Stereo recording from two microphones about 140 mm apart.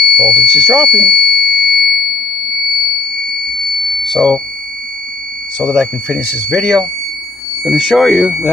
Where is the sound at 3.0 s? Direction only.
90° right.